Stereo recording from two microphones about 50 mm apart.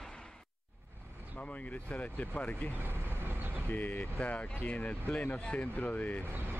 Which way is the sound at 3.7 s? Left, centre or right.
Left.